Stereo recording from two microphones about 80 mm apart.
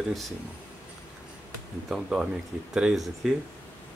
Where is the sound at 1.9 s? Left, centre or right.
Centre.